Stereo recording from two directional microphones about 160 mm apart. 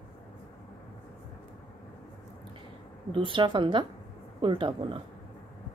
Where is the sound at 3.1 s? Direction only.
30° right (ahead or behind).